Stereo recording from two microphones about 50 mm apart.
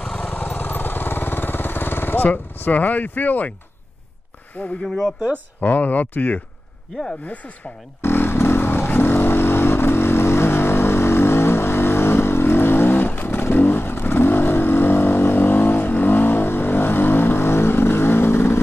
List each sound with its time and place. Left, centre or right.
0.2 s vehicle: left
4.8 s speech: centre
5.6 s speech: left
8.0 s vehicle: left